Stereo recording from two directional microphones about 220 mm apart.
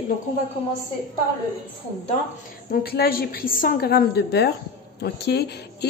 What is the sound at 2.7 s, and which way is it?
A woman's voice, 45° left (ahead or behind).